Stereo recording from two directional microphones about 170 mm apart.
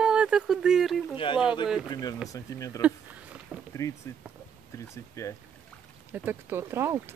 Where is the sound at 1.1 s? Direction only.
30° left (ahead or behind).